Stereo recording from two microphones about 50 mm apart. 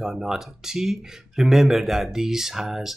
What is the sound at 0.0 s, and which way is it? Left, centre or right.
Speech, centre.